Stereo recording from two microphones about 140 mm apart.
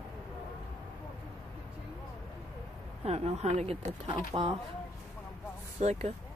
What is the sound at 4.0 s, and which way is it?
Speech, 35° right (ahead or behind).